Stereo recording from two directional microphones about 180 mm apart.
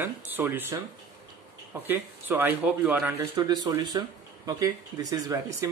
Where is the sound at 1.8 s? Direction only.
10° right (ahead or behind).